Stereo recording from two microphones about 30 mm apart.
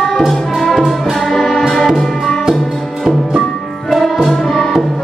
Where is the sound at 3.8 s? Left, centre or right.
Centre.